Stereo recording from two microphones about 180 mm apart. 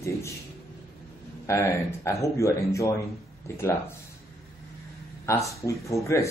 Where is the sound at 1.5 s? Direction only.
15° left (ahead or behind).